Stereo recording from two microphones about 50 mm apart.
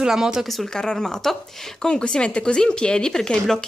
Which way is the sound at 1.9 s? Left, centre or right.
Centre.